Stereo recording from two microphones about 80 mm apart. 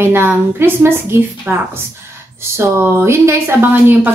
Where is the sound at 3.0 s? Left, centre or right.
Right.